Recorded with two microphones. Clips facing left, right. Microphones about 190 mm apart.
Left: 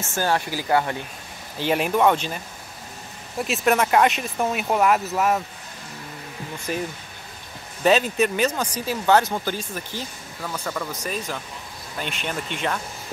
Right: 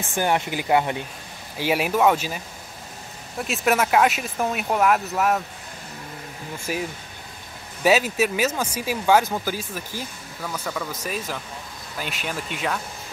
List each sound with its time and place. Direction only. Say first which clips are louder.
0.0 s speech: right 1 dB; 15° right (ahead or behind)
1.6 s speech: even; 10° right (ahead or behind)
6.7 s speech: even; 5° right (ahead or behind)